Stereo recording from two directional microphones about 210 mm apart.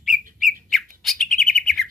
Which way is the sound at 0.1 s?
40° right (ahead or behind).